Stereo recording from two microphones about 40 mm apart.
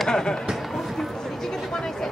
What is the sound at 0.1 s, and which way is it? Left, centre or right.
Speech, centre.